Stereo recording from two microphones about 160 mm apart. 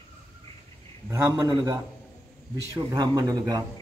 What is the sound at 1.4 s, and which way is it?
Speech, 25° right (ahead or behind).